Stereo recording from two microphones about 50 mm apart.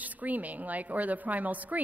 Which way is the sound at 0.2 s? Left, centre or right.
Right.